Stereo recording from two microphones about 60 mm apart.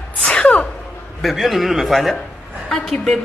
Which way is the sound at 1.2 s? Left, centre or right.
Centre.